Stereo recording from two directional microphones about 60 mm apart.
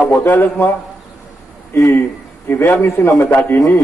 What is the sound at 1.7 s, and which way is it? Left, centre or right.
Speech, left.